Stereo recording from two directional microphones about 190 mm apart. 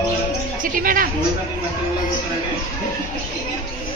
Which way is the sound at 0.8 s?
50° right (ahead or behind).